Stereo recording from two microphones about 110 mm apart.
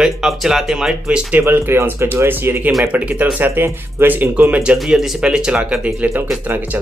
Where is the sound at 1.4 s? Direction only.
20° right (ahead or behind).